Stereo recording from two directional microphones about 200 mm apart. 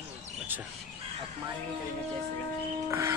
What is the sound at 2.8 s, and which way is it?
Speech, 15° right (ahead or behind).